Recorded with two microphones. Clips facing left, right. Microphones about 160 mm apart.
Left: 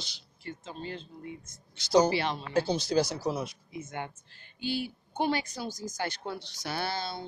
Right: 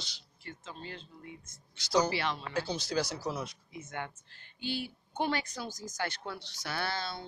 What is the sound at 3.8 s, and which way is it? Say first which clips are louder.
Speech: left 2 dB; 30° left (ahead or behind).